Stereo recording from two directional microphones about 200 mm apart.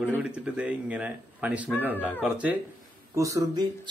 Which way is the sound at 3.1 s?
15° right (ahead or behind).